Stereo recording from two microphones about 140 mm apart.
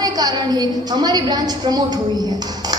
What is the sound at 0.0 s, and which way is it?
A woman's voice, 30° right (ahead or behind).